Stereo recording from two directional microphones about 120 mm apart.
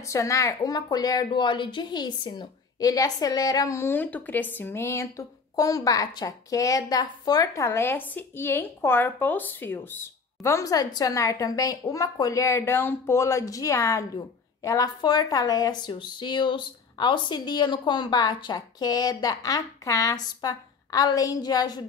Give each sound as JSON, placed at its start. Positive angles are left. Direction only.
{"t": 0.0, "sound": "a woman's voice", "side_deg": 25}